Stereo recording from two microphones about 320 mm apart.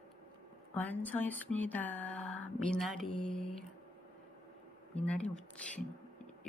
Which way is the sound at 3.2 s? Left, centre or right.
Right.